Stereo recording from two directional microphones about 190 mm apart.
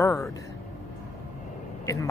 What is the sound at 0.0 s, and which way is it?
Vehicle, 15° left (ahead or behind).